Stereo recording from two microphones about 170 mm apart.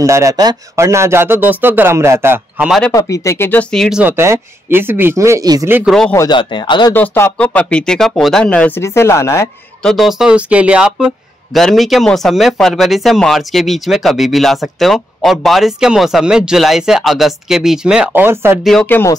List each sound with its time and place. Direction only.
0.0 s speech: 20° right (ahead or behind)
2.9 s speech: 20° left (ahead or behind); by 4.0 s centre (ahead or behind)
4.0 s speech: 15° right (ahead or behind)
5.9 s speech: 5° left (ahead or behind)
6.1 s a man's voice: 25° left (ahead or behind)
6.9 s speech: 15° left (ahead or behind)
9.8 s speech: centre (ahead or behind)
18.6 s speech: 5° left (ahead or behind)